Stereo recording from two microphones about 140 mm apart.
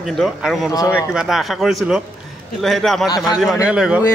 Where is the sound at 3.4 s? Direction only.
5° right (ahead or behind).